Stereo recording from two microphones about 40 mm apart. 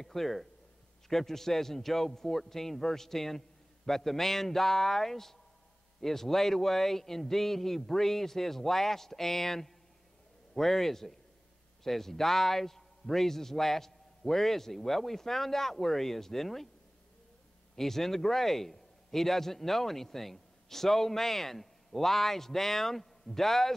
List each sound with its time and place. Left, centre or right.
0.0 s a man's voice: centre
17.7 s a man's voice: centre